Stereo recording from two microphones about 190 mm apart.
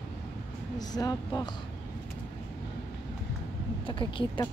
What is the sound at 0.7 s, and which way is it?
Speech, 20° left (ahead or behind).